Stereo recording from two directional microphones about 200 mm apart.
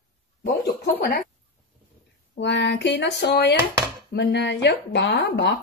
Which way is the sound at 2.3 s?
60° left (ahead or behind).